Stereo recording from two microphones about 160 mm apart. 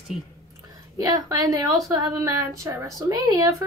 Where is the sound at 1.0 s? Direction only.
25° right (ahead or behind).